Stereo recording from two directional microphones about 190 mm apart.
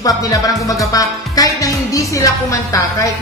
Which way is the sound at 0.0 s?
20° left (ahead or behind).